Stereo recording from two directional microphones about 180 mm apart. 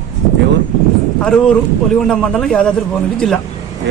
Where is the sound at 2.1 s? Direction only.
5° left (ahead or behind).